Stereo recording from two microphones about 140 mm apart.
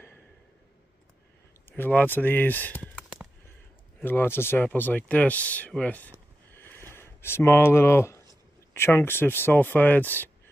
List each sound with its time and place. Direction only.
1.7 s speech: 15° left (ahead or behind)